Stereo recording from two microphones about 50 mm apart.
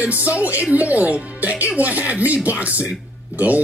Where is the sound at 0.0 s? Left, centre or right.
Right.